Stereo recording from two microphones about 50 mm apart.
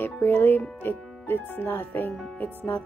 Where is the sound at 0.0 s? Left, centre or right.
Left.